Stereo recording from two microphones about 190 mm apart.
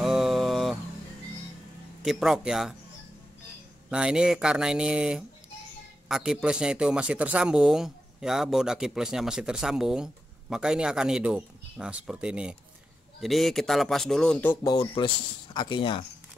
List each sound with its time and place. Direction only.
0.0 s a sound: centre (ahead or behind)
2.0 s speech: centre (ahead or behind)
3.9 s a man's voice: 5° right (ahead or behind); by 16.1 s 25° left (ahead or behind)